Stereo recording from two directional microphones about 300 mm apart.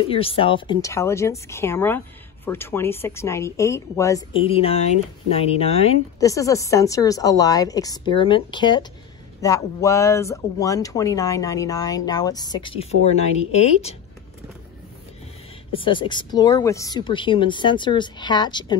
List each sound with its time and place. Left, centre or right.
0.0 s speech: centre
15.7 s speech: centre